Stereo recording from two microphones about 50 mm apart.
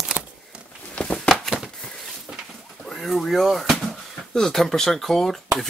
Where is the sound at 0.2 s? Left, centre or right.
Right.